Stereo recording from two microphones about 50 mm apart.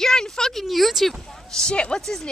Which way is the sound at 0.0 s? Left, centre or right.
Centre.